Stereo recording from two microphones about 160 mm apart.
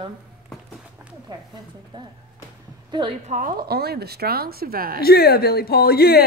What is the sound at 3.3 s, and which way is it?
A woman's voice, 55° right (ahead or behind).